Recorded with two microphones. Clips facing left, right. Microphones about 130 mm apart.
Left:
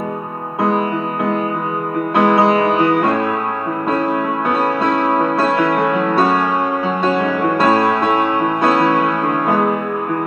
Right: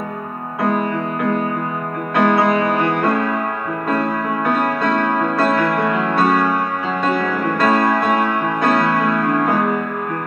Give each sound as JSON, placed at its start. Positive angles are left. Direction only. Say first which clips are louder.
{"t": 2.1, "sound": "music", "louder": "left 2 dB", "side_deg": 25}
{"t": 7.1, "sound": "music", "louder": "left 2 dB", "side_deg": 25}